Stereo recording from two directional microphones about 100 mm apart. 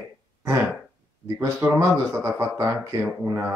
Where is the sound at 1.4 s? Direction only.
25° right (ahead or behind).